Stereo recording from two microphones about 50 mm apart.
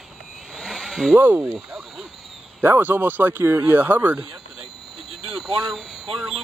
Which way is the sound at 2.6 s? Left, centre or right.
Right.